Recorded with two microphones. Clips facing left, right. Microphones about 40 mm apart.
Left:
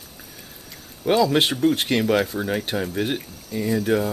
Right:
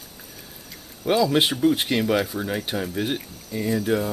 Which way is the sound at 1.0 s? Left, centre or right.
Centre.